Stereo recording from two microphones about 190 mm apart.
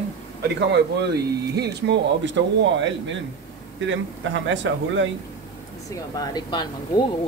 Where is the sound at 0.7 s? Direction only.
60° right (ahead or behind).